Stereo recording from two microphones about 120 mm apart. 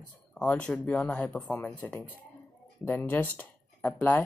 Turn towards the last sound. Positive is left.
turn(degrees=15)  # may be behind; listen again after turning